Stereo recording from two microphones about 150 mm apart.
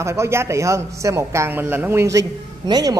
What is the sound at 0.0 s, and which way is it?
Speech, 20° right (ahead or behind).